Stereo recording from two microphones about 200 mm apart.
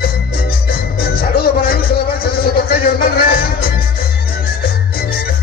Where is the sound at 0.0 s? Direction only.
50° left (ahead or behind).